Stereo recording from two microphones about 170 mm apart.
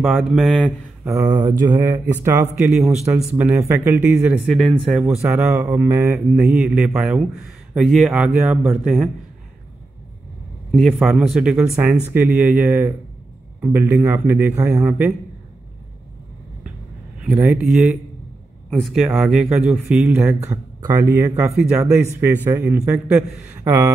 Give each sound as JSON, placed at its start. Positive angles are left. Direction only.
{"t": 0.0, "sound": "speech", "side_deg": 0}
{"t": 1.1, "sound": "a man's voice", "side_deg": -20}
{"t": 4.5, "sound": "a man's voice", "side_deg": 0}
{"t": 5.2, "sound": "a man's voice", "side_deg": -15}
{"t": 10.7, "sound": "a man's voice", "side_deg": 0}
{"t": 17.2, "sound": "a man's voice", "side_deg": -10}